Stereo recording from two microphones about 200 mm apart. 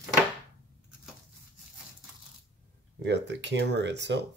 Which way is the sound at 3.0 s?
60° right (ahead or behind).